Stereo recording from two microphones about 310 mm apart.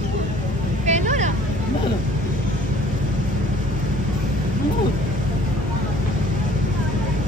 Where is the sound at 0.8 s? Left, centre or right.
Right.